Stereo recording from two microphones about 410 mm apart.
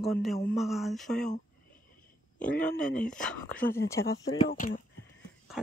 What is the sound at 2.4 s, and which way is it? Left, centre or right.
Speech, centre.